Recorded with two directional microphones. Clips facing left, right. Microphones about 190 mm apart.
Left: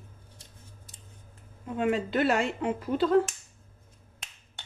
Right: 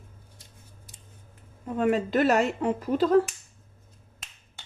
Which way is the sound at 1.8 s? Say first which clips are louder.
Right 3 dB; 40° right (ahead or behind).